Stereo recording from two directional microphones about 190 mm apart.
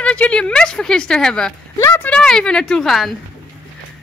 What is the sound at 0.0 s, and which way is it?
A woman's voice, 5° left (ahead or behind).